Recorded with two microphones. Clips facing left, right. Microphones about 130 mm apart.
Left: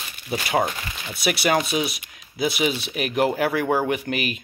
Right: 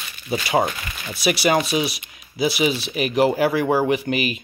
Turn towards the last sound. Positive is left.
turn(degrees=0)  # may be behind; listen again after turning